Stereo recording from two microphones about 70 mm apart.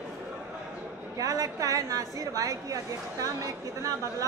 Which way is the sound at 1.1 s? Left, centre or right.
Right.